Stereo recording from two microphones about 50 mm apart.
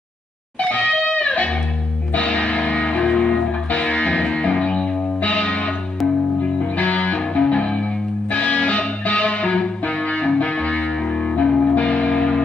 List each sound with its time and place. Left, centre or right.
0.6 s music: left
6.8 s music: left